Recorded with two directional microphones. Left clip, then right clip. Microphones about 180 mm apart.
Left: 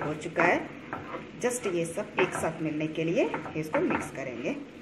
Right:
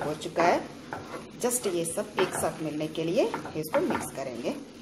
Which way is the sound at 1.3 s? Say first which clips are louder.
Right 1 dB; 20° right (ahead or behind).